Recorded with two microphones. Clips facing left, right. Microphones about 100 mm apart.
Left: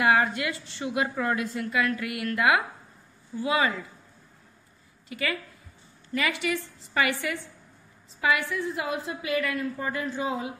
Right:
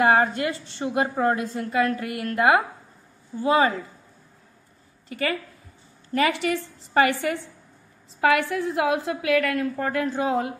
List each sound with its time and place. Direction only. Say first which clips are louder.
0.0 s a woman's voice: right 4 dB; 40° right (ahead or behind)
5.1 s a woman's voice: right 4 dB; 45° right (ahead or behind)
8.2 s a woman's voice: right 5 dB; 55° right (ahead or behind)